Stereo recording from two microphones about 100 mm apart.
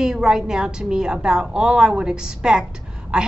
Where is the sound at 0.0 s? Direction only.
5° right (ahead or behind).